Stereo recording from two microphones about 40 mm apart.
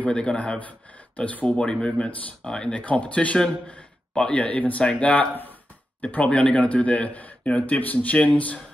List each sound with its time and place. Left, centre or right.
0.0 s speech: left
2.8 s a man's voice: left